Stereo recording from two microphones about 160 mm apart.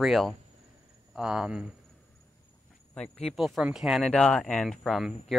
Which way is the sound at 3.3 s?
Centre (ahead or behind).